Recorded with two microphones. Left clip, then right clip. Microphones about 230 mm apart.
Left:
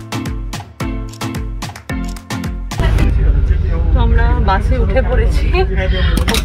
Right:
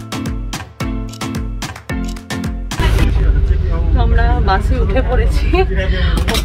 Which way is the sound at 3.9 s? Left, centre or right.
Centre.